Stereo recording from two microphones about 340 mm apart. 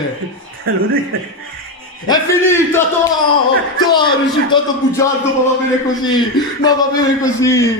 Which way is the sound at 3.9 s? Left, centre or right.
Centre.